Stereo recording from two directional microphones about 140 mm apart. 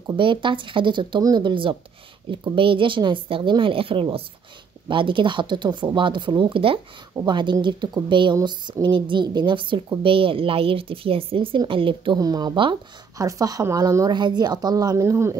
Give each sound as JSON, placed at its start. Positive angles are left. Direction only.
{"t": 0.1, "sound": "speech", "side_deg": -35}
{"t": 12.2, "sound": "a woman's voice", "side_deg": -30}